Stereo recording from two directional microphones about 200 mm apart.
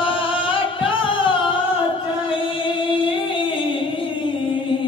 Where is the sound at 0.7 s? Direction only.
25° left (ahead or behind).